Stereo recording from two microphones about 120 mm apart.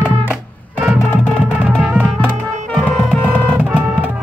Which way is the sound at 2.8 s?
10° left (ahead or behind).